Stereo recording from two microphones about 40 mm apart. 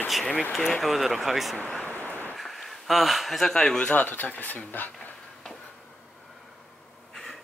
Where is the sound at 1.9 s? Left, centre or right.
Left.